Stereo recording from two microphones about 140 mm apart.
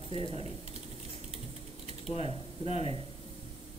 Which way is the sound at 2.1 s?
45° left (ahead or behind).